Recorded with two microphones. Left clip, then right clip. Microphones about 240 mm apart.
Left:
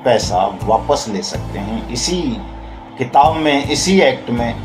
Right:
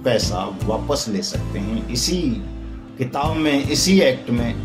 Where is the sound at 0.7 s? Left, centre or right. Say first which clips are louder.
Left 9 dB; centre.